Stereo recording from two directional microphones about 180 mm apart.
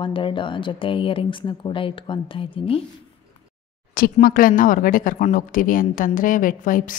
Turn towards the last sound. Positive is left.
turn(degrees=50)  # may be behind; listen again after turning